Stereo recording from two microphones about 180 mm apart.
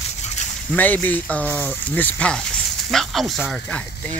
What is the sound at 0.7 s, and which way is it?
Speech, 10° left (ahead or behind).